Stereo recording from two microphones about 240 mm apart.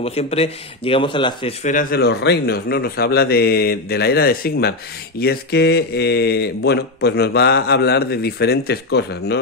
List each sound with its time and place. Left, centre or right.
0.0 s speech: left
1.7 s a man's voice: left